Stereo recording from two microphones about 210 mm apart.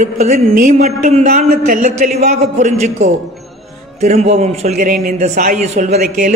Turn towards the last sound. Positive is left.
turn(degrees=-35)  # may be behind; listen again after turning